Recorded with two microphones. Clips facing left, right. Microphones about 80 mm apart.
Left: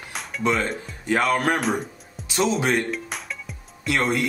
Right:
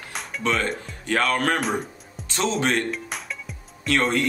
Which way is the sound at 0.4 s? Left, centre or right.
Centre.